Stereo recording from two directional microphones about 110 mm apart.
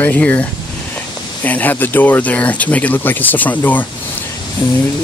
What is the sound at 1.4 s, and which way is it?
Speech, 15° left (ahead or behind).